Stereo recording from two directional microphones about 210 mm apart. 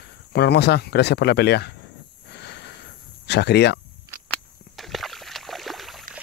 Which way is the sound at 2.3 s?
50° left (ahead or behind).